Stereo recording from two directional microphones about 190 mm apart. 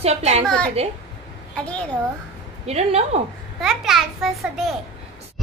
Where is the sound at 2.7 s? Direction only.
35° right (ahead or behind).